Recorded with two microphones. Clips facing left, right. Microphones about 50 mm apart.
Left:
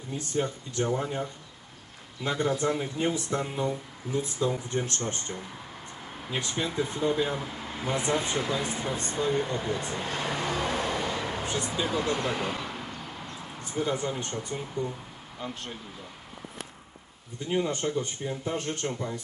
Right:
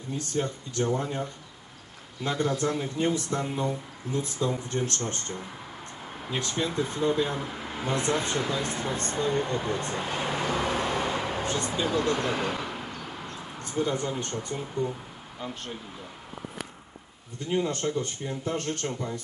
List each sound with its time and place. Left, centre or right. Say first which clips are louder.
0.2 s speech: left 1 dB; centre
2.3 s speech: even; centre
3.4 s speech: right 1 dB; centre
4.1 s speech: even; centre
7.5 s a sound: right 2 dB; centre
7.8 s speech: right 1 dB; centre
10.0 s vehicle: even; centre
11.4 s speech: right 2 dB; centre
12.2 s vehicle: right 2 dB; centre
13.6 s speech: right 1 dB; centre
14.8 s a sound: right 2 dB; centre
17.5 s speech: right 1 dB; centre